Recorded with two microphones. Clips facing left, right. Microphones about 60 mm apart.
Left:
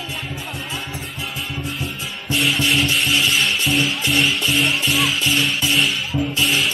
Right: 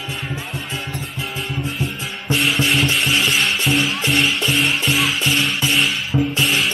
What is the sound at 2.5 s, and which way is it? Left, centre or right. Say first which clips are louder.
Rub: right 1 dB; centre.